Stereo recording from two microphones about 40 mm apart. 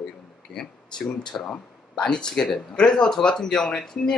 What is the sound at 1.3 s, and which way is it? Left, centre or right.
Speech, centre.